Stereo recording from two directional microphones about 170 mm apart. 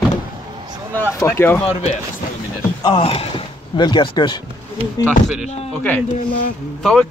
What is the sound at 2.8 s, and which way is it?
Speech, 30° left (ahead or behind).